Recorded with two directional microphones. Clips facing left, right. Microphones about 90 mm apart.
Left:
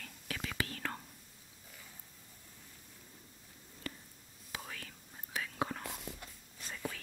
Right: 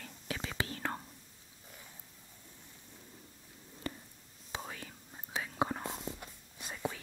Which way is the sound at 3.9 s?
25° right (ahead or behind).